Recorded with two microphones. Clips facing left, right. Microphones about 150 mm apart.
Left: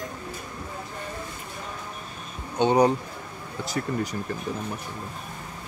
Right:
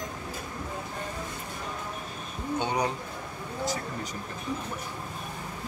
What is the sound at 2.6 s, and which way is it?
Speech, 20° left (ahead or behind).